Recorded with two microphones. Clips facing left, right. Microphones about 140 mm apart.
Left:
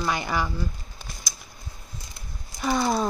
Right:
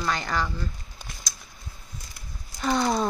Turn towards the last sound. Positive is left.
turn(degrees=5)  # may be behind; listen again after turning